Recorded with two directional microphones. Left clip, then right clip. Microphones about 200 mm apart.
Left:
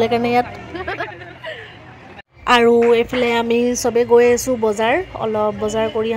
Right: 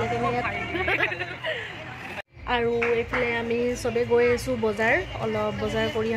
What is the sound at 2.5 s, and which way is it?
A woman's voice, 50° left (ahead or behind).